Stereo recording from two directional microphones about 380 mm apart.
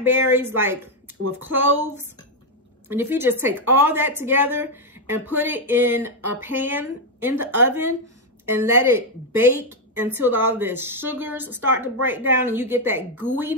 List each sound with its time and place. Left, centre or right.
0.0 s a woman's voice: centre
1.2 s speech: right
1.6 s a woman's voice: centre